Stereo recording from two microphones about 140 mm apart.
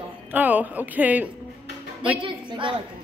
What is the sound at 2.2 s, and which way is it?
Speech, 35° right (ahead or behind).